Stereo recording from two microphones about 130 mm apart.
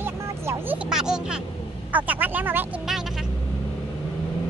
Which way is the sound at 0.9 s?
5° right (ahead or behind).